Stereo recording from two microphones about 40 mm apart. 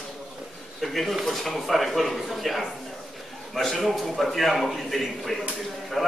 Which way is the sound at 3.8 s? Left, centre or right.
Centre.